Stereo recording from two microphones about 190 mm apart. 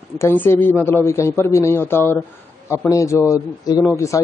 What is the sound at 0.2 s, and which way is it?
Speech, 10° left (ahead or behind).